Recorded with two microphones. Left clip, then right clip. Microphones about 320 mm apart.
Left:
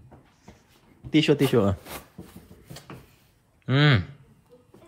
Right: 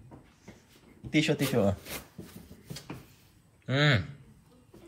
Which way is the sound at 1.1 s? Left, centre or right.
Centre.